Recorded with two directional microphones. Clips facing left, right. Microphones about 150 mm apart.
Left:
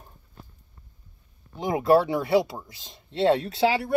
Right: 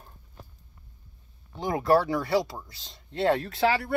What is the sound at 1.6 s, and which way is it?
Speech, 20° left (ahead or behind).